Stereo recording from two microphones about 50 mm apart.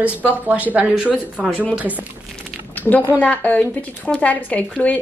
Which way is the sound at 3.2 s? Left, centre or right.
Left.